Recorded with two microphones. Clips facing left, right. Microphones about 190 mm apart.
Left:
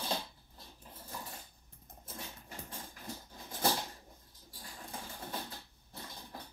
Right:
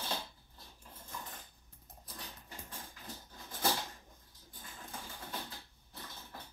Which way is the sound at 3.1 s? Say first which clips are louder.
Left 4 dB; 30° left (ahead or behind).